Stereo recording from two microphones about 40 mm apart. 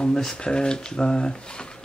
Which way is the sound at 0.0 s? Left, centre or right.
Centre.